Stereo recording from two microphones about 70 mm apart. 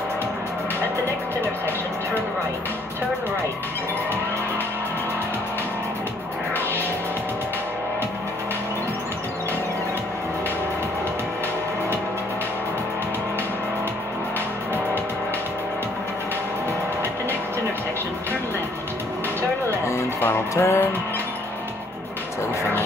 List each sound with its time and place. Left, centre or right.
20.5 s music: left
22.6 s vehicle: left